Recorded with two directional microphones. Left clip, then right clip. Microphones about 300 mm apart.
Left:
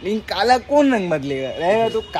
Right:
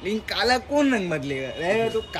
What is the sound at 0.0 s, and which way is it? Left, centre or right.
Speech, centre.